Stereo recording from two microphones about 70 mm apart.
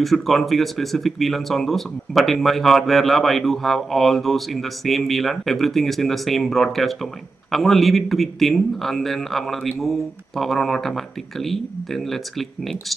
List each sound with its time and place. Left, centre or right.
0.0 s speech: centre